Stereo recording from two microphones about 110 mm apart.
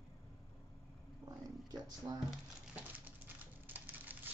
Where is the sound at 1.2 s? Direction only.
35° right (ahead or behind).